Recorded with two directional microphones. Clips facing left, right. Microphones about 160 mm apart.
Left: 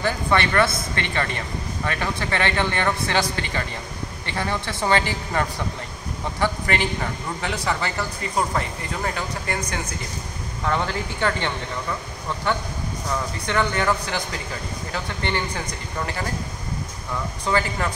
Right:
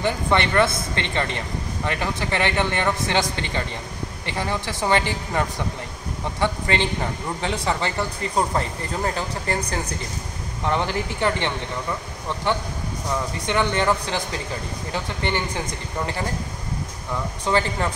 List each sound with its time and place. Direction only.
0.0 s a man's voice: 20° right (ahead or behind)
10.6 s a man's voice: 20° right (ahead or behind)
13.5 s a man's voice: 20° right (ahead or behind)
17.5 s a man's voice: 25° right (ahead or behind)